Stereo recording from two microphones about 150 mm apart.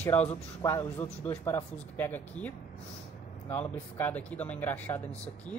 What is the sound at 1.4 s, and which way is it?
Speech, 15° left (ahead or behind).